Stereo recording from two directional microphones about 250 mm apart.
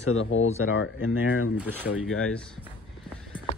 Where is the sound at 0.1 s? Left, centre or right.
Left.